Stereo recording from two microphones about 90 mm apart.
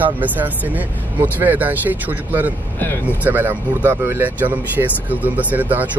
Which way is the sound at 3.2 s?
20° right (ahead or behind).